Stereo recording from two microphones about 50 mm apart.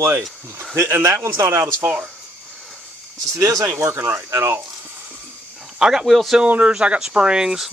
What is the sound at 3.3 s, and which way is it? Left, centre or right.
Speech, right.